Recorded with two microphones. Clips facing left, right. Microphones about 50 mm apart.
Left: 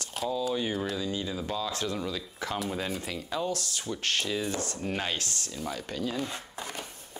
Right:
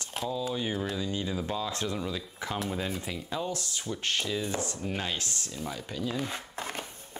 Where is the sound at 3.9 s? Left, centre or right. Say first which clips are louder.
Left 1 dB; centre.